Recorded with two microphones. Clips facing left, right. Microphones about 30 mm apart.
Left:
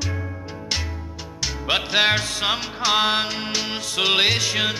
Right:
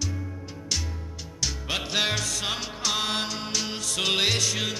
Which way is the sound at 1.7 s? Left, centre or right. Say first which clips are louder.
Left 8 dB; left.